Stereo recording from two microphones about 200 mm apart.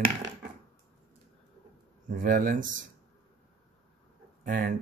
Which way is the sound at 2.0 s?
40° right (ahead or behind).